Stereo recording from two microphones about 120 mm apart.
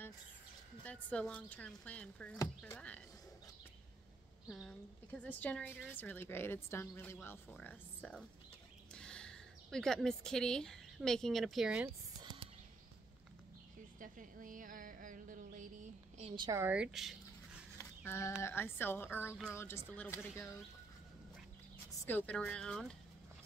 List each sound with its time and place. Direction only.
0.8 s a woman's voice: 10° left (ahead or behind)
4.5 s speech: centre (ahead or behind)
5.2 s a woman's voice: 10° left (ahead or behind); by 11.9 s 10° right (ahead or behind)
13.9 s a woman's voice: 90° right
16.7 s a sound: 5° right (ahead or behind)
17.7 s a sound: 20° left (ahead or behind)
18.4 s speech: 20° left (ahead or behind)
22.0 s speech: 15° left (ahead or behind)